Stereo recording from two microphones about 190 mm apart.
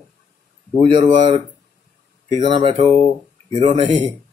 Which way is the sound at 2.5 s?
25° right (ahead or behind).